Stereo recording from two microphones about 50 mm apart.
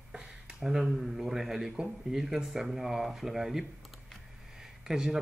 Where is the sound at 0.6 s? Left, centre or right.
Centre.